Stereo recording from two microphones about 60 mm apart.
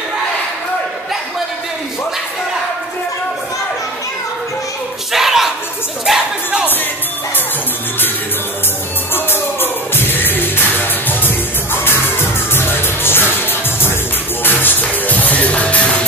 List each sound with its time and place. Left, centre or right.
5.1 s a sound: centre
6.0 s music: centre
9.1 s music: left